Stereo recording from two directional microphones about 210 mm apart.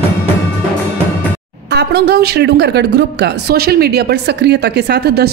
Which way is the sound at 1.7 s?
50° right (ahead or behind).